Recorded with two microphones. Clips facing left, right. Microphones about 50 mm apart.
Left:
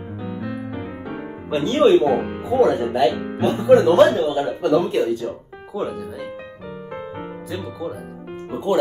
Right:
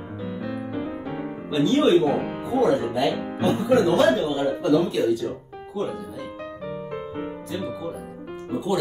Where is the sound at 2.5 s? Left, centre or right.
Left.